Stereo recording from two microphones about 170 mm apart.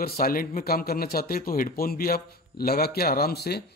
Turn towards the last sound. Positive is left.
turn(degrees=70)  # may be behind; listen again after turning